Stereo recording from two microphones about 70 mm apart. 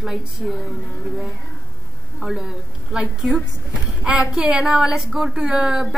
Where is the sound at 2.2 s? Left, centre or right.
Centre.